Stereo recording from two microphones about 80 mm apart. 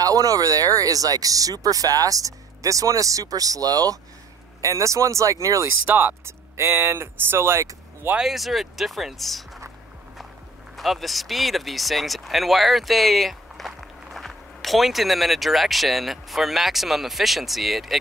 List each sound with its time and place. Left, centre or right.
0.0 s speech: right
5.9 s speech: right
8.2 s speech: centre
10.8 s speech: centre